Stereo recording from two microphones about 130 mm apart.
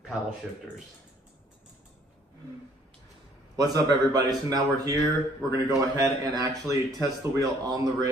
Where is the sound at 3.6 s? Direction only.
30° right (ahead or behind).